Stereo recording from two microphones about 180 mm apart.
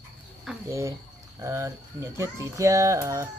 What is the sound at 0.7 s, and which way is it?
Speech, 15° right (ahead or behind).